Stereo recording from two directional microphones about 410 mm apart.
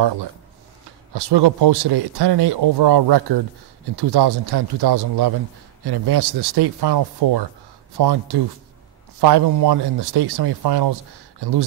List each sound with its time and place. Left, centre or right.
1.1 s speech: right